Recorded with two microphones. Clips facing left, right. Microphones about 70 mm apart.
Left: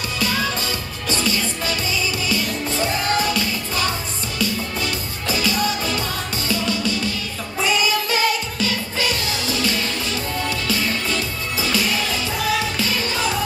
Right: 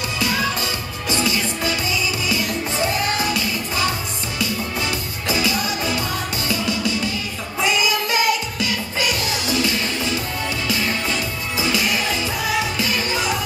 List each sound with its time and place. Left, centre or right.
0.2 s music: right
4.4 s music: right
7.6 s music: centre
11.6 s music: right